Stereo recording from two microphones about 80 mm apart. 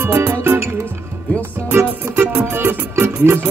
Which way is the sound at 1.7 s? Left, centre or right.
Right.